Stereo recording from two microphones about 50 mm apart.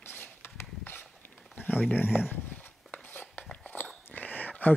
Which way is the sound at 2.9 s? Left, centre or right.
Left.